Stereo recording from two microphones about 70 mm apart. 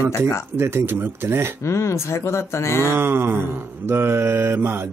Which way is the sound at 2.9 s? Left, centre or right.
Right.